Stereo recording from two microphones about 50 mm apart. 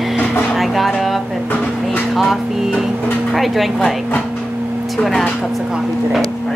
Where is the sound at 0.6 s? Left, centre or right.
Centre.